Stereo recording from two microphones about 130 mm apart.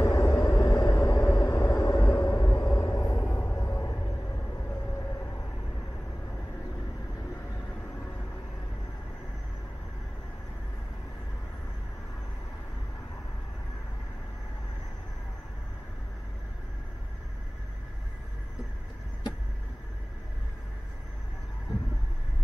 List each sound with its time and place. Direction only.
0.0 s vehicle: 25° left (ahead or behind)